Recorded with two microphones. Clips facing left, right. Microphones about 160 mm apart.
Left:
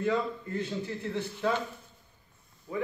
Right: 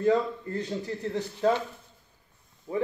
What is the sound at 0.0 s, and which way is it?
A man's voice, 35° right (ahead or behind).